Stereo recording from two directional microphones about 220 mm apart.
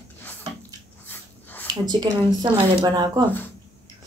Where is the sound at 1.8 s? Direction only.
20° right (ahead or behind).